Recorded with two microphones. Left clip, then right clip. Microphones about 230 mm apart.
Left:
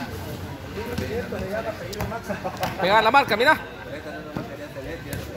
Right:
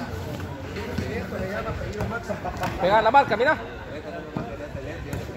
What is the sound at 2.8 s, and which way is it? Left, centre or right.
Speech, left.